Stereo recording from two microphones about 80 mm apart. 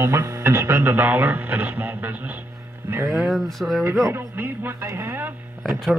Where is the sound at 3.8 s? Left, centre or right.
Right.